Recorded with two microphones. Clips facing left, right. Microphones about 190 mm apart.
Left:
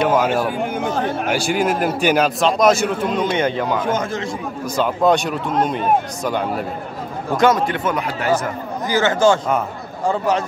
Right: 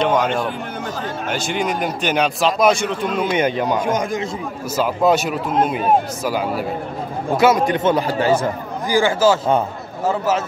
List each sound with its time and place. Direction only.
0.0 s a man's voice: 5° left (ahead or behind)
3.3 s a man's voice: 15° right (ahead or behind)
8.8 s a man's voice: 10° right (ahead or behind)